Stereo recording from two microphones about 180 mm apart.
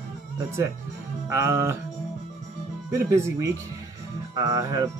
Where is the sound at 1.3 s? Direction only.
15° right (ahead or behind).